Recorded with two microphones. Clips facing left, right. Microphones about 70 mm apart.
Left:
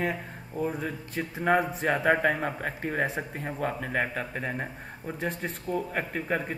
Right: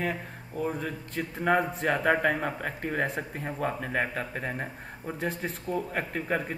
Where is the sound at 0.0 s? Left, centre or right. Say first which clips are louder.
Left 1 dB; centre.